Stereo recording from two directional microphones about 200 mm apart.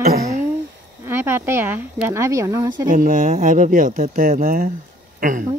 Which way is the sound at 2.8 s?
40° right (ahead or behind).